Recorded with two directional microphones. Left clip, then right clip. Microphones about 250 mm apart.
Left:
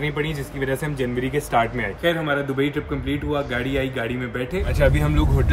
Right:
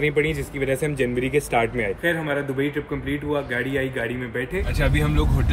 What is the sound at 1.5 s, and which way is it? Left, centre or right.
Speech, left.